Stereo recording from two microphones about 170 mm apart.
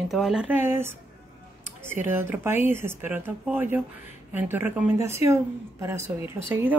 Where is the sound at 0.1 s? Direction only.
5° right (ahead or behind).